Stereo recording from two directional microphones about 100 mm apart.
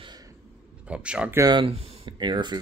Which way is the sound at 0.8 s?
10° right (ahead or behind).